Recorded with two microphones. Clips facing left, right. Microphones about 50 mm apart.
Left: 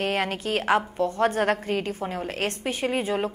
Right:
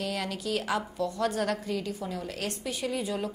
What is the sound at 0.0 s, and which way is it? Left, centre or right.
A woman's voice, left.